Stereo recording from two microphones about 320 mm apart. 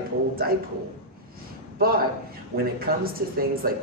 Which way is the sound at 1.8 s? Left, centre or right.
Right.